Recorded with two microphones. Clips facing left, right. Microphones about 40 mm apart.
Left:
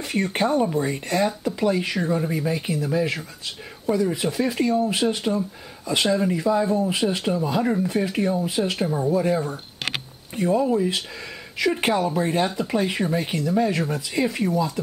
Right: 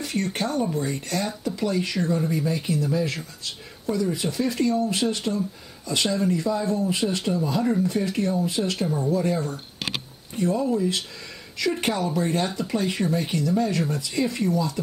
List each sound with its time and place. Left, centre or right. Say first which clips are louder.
0.0 s speech: left 4 dB; centre